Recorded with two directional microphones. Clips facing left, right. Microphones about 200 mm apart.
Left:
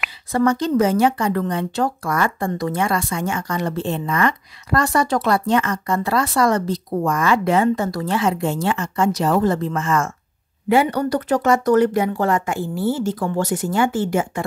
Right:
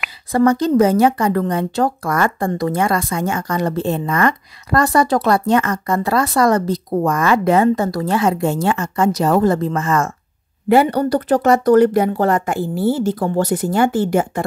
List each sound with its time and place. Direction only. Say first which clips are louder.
0.3 s a woman's voice: right 4 dB; 35° right (ahead or behind)